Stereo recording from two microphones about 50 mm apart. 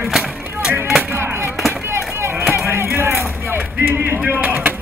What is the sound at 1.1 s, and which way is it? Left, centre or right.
Music, right.